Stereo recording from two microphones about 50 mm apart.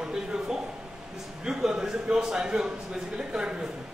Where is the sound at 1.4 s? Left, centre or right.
Centre.